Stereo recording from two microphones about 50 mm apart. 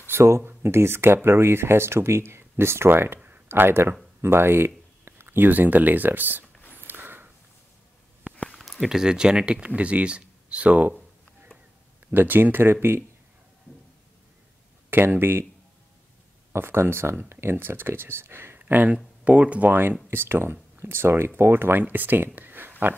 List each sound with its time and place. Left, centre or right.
0.1 s speech: right
0.4 s speech: right
6.4 s a sound: left
6.9 s a sound: right
8.5 s speech: centre; by 11.0 s right
12.1 s speech: right
14.9 s speech: right
16.5 s speech: right
18.6 s speech: right
20.1 s speech: right
21.8 s speech: right